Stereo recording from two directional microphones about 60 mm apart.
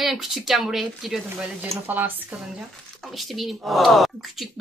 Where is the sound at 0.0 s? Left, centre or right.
Centre.